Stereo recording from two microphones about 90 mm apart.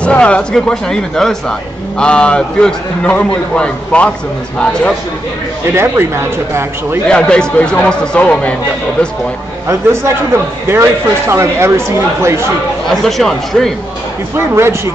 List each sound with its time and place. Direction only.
0.0 s a man's voice: 10° left (ahead or behind)
7.1 s a man's voice: 10° left (ahead or behind)
9.7 s speech: 30° right (ahead or behind)
13.0 s speech: 5° left (ahead or behind)
14.3 s speech: 30° right (ahead or behind)